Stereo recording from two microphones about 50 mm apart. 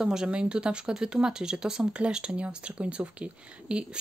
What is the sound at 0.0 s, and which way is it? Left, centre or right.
Speech, centre.